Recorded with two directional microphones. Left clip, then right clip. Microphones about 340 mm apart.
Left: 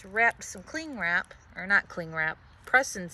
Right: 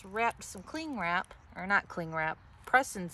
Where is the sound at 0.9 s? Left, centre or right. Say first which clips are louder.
Left 4 dB; centre.